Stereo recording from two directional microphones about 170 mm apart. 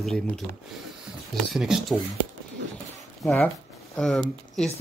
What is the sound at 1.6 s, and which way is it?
Speech, 5° right (ahead or behind).